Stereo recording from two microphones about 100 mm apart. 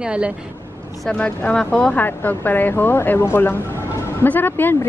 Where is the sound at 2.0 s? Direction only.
20° left (ahead or behind).